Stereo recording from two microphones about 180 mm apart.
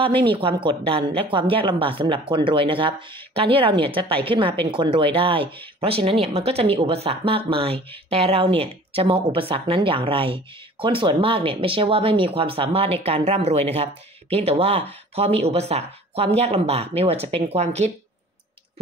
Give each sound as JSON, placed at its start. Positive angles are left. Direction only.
{"t": 0.0, "sound": "speech", "side_deg": -30}